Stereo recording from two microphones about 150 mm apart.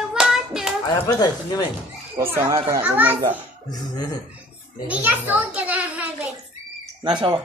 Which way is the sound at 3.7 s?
25° left (ahead or behind).